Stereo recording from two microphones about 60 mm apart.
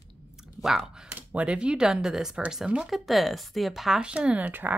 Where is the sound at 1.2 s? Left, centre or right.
Right; by 4.0 s centre.